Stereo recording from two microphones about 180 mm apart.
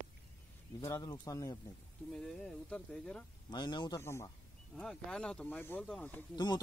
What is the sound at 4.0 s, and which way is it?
Speech, 15° left (ahead or behind).